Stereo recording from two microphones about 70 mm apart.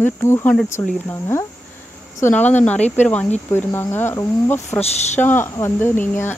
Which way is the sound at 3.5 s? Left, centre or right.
Left.